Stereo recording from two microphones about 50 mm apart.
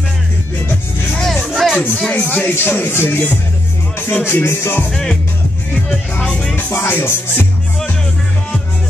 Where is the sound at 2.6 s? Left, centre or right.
Left.